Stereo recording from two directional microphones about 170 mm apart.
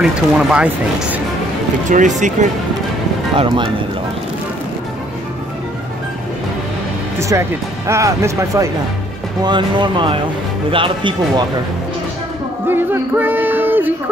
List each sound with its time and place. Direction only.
0.0 s speech: 5° right (ahead or behind)
1.9 s speech: 45° right (ahead or behind)
3.3 s speech: 30° right (ahead or behind)
7.2 s speech: 15° right (ahead or behind)
12.6 s speech: 10° right (ahead or behind)